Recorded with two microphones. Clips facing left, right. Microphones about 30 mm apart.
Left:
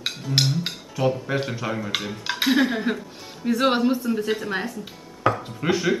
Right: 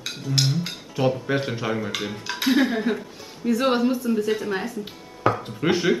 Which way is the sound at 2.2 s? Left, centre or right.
Left.